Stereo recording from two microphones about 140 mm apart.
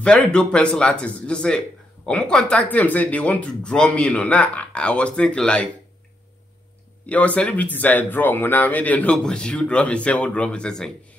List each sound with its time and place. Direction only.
0.0 s speech: 5° left (ahead or behind)
7.1 s speech: 10° left (ahead or behind)